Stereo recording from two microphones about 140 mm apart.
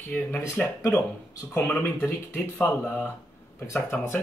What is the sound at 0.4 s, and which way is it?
Speech, 20° left (ahead or behind).